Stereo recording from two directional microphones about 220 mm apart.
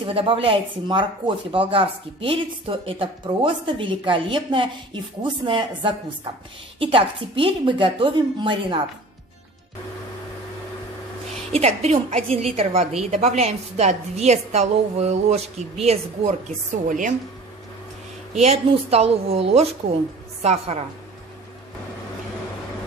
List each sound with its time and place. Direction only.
0.0 s a woman's voice: 25° right (ahead or behind)
11.5 s a woman's voice: 30° right (ahead or behind)
18.3 s a woman's voice: 30° right (ahead or behind)